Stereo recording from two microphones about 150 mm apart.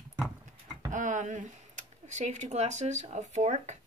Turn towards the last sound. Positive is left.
turn(degrees=-50)  # may be behind; listen again after turning